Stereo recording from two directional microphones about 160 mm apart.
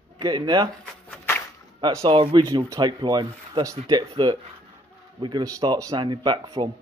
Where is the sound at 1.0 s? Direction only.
15° left (ahead or behind).